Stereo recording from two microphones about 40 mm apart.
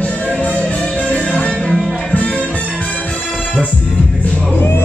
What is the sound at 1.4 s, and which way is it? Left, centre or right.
Music, left.